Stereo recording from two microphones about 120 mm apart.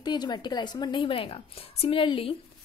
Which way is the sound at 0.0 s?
35° left (ahead or behind).